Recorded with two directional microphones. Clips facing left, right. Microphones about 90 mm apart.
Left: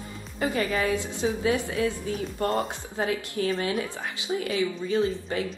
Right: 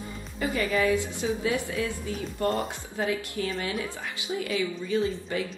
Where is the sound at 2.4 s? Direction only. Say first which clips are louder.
Even; 35° left (ahead or behind).